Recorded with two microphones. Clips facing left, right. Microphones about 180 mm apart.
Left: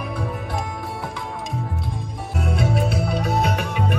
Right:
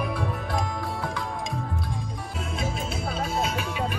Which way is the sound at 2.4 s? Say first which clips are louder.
Left 9 dB; 70° left (ahead or behind).